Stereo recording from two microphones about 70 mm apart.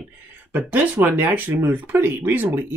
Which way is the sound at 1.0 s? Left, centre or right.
Right.